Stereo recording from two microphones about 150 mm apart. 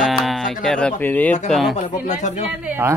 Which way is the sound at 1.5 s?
Centre (ahead or behind).